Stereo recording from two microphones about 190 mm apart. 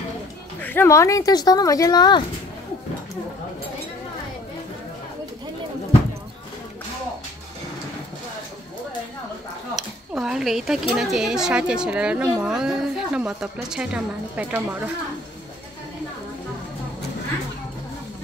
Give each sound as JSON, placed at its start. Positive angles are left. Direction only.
{"t": 0.6, "sound": "speech", "side_deg": 10}
{"t": 9.8, "sound": "speech", "side_deg": -5}